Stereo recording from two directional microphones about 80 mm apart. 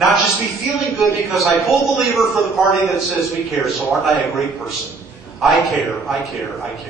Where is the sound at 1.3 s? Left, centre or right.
Centre.